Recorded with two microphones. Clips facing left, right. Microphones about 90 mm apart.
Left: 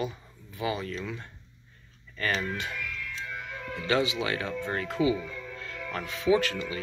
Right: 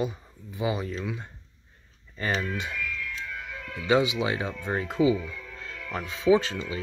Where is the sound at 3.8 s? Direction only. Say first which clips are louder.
Right 4 dB; 15° right (ahead or behind).